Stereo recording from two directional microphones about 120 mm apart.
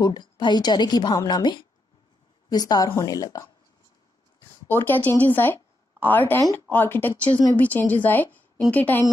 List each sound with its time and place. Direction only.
0.0 s a woman's voice: 35° left (ahead or behind)
4.6 s a woman's voice: 15° left (ahead or behind)